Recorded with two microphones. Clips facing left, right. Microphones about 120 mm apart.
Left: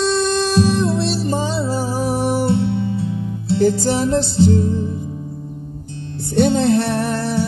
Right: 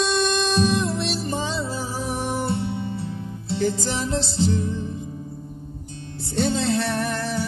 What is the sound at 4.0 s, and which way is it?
Music, 55° left (ahead or behind).